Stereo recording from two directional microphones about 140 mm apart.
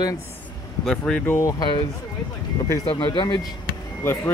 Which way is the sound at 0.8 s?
5° left (ahead or behind).